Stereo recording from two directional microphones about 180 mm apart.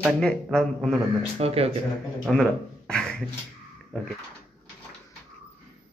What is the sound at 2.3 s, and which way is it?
Speech, centre (ahead or behind).